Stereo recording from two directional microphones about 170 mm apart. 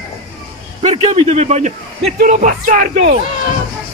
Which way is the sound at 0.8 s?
35° right (ahead or behind).